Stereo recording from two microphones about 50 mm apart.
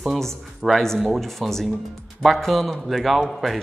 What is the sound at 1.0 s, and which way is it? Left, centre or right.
Speech, centre.